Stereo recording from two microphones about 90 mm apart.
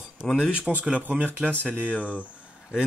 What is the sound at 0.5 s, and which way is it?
Speech, 15° right (ahead or behind).